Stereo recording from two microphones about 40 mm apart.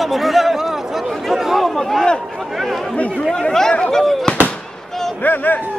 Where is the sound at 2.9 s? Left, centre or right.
Left.